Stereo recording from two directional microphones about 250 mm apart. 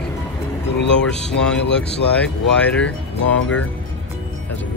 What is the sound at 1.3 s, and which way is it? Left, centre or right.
Speech, centre.